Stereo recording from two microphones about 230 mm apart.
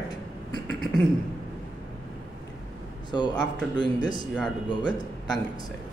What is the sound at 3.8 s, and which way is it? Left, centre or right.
Speech, centre.